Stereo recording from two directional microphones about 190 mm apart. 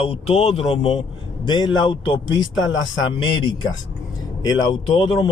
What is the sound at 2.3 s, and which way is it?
Speech, 25° left (ahead or behind).